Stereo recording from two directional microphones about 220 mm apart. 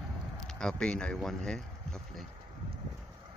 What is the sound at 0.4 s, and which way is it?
Speech, 5° left (ahead or behind).